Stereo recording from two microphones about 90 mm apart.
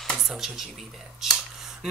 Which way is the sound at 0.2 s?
Centre (ahead or behind).